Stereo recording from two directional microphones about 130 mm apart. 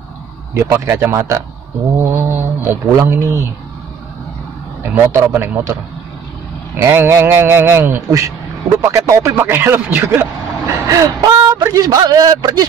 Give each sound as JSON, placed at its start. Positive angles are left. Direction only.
{"t": 0.6, "sound": "speech", "side_deg": -20}
{"t": 4.9, "sound": "speech", "side_deg": -20}
{"t": 6.8, "sound": "speech", "side_deg": -20}